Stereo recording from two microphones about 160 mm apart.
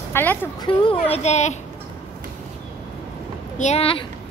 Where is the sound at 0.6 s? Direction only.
35° left (ahead or behind).